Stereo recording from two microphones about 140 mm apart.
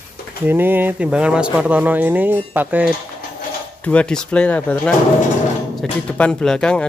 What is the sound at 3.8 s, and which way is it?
Speech, 10° left (ahead or behind).